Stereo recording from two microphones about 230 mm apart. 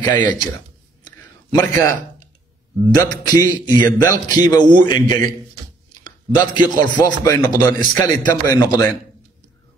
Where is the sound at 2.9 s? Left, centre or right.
Centre.